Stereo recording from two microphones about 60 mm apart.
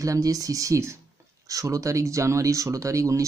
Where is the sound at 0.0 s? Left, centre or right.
Right.